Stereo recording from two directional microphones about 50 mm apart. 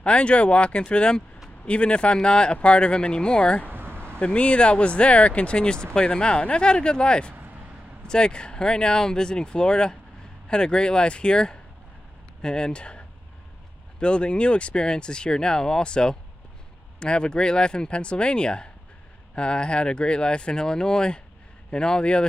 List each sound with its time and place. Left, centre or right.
0.0 s speech: left
3.6 s a sound: right
4.2 s speech: left